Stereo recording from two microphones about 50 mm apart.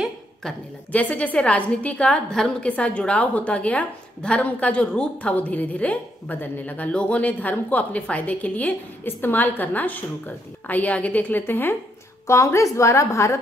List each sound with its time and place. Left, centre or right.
0.9 s a woman's voice: left
6.9 s a woman's voice: left
9.0 s a woman's voice: left
12.3 s a woman's voice: left